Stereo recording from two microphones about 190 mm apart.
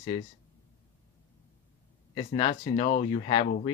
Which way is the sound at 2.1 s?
25° left (ahead or behind).